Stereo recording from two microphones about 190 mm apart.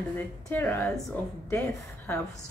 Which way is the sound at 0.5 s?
10° left (ahead or behind).